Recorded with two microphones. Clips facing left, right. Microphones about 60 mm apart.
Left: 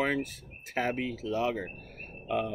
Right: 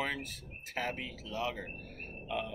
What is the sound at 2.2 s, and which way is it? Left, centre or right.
Speech, left.